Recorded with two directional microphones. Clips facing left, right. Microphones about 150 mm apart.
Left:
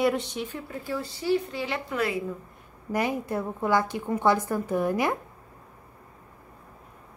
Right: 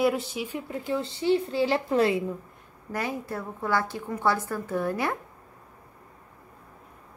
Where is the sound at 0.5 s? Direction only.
20° right (ahead or behind).